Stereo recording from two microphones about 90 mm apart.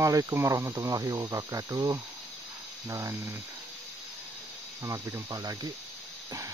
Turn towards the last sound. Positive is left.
turn(degrees=-45)  # may be behind; listen again after turning